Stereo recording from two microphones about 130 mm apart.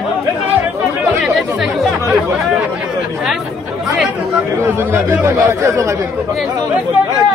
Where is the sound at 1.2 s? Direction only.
Centre (ahead or behind).